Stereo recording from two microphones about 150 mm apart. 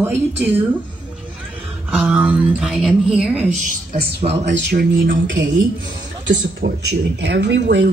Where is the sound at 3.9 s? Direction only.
90° right.